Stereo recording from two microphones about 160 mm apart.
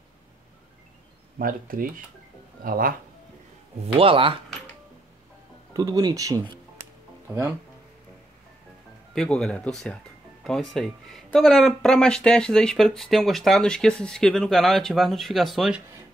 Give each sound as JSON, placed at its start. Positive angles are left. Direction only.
{"t": 1.4, "sound": "speech", "side_deg": -60}
{"t": 3.8, "sound": "speech", "side_deg": -35}
{"t": 5.7, "sound": "speech", "side_deg": -25}
{"t": 9.1, "sound": "speech", "side_deg": 5}